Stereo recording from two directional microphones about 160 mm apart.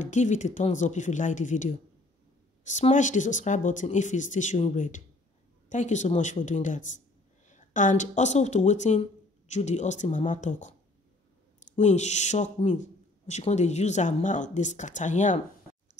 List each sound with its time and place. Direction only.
0.0 s speech: 50° left (ahead or behind)
11.7 s speech: 45° left (ahead or behind)